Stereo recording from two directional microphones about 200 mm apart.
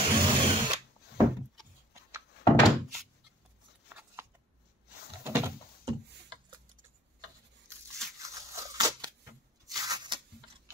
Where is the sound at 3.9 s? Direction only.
10° right (ahead or behind).